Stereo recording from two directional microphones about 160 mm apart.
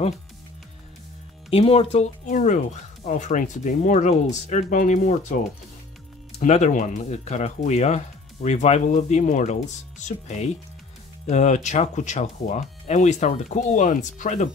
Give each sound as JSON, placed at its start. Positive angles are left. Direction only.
{"t": 1.5, "sound": "speech", "side_deg": 35}
{"t": 6.4, "sound": "speech", "side_deg": 45}